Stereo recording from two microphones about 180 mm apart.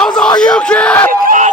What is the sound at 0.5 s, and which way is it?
Yell, 5° left (ahead or behind).